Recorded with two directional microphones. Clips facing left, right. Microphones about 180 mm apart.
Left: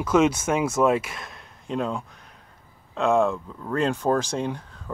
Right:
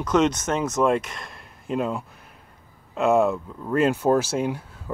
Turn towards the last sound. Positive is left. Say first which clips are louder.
# right 2 dB
turn(degrees=-10)  # may be behind; listen again after turning